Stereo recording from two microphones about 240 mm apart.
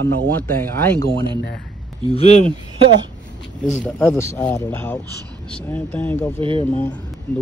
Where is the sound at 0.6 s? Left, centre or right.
Centre.